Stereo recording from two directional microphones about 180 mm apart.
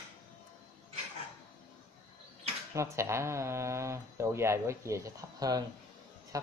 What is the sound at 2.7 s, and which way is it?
Speech, 15° right (ahead or behind).